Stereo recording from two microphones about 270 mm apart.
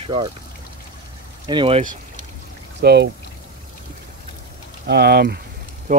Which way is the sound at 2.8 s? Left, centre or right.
Right.